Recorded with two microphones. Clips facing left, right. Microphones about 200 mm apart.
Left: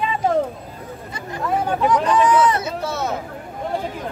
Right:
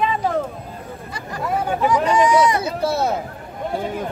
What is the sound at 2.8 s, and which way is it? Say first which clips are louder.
Speech: right 5 dB; 35° right (ahead or behind).